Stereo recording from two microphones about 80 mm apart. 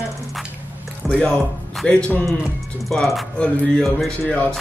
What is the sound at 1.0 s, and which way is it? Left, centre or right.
Speech, centre.